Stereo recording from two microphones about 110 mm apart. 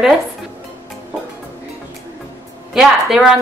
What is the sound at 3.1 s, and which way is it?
Speech, 5° right (ahead or behind).